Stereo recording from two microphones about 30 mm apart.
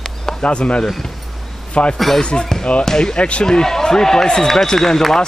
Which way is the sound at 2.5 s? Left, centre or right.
Centre.